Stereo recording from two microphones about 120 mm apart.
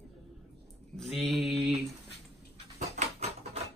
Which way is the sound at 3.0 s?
65° right (ahead or behind).